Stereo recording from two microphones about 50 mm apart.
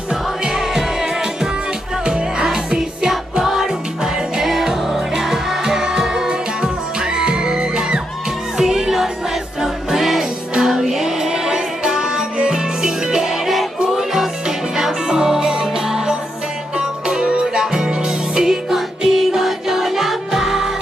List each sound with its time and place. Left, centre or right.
0.1 s music: centre